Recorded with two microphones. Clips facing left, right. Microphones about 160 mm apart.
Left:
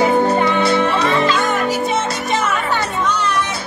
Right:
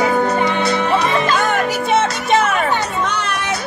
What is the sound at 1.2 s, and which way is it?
Music, 60° right (ahead or behind).